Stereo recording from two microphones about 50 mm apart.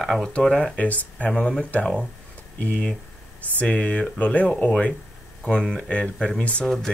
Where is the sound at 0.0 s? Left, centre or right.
Centre.